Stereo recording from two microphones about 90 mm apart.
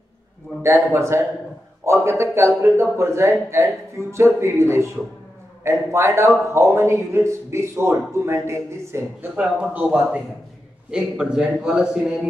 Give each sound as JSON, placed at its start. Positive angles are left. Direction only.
{"t": 0.6, "sound": "speech", "side_deg": -30}
{"t": 9.2, "sound": "a man's voice", "side_deg": -15}